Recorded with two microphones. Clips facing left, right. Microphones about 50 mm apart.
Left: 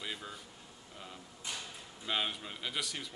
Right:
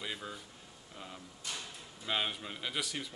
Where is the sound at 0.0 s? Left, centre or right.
Centre.